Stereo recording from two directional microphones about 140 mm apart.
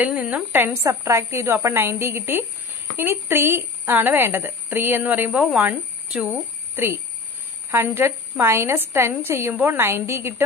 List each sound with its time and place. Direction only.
0.0 s a woman's voice: 10° right (ahead or behind)
6.7 s a sound: 15° right (ahead or behind)
7.7 s a woman's voice: 15° right (ahead or behind)